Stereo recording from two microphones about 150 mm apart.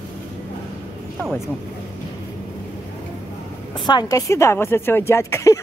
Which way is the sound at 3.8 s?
30° left (ahead or behind).